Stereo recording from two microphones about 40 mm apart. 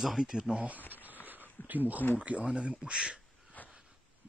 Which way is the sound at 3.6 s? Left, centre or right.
Left.